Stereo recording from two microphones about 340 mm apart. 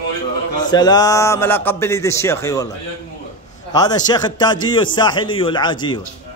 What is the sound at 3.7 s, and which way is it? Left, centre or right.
A man's voice, centre.